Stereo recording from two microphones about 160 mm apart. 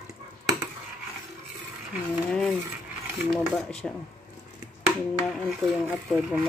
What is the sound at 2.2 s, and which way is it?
Mechanisms, 5° left (ahead or behind).